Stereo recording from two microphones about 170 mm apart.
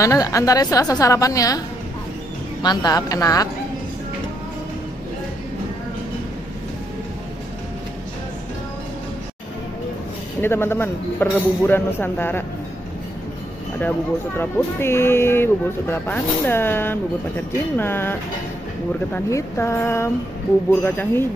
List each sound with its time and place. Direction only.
0.0 s a woman's voice: 20° left (ahead or behind)
2.6 s a woman's voice: 25° left (ahead or behind)
10.4 s speech: 15° left (ahead or behind)
13.7 s speech: 10° left (ahead or behind)
19.1 s speech: 15° left (ahead or behind)